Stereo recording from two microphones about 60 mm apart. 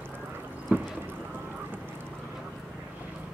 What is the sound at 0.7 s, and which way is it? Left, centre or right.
Boat, right.